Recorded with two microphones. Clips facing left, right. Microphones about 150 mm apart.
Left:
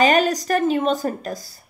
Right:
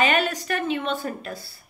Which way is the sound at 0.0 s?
40° left (ahead or behind).